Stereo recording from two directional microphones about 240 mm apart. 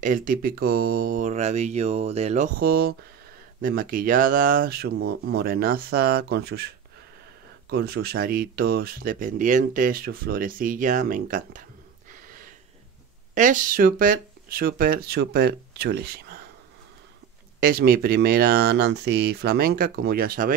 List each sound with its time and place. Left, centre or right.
0.0 s speech: right
7.7 s speech: right
13.3 s speech: right
17.6 s speech: right